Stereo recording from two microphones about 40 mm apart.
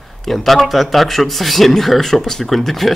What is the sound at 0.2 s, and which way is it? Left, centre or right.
A man's voice, centre.